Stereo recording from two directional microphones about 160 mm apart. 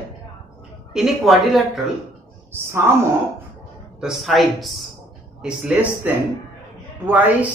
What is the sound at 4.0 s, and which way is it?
Speech, centre (ahead or behind).